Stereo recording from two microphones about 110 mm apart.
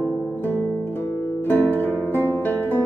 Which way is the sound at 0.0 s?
20° left (ahead or behind).